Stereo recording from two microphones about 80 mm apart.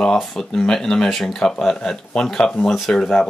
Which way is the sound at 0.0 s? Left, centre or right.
Centre.